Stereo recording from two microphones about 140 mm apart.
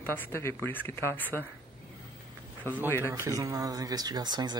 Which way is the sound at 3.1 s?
25° right (ahead or behind).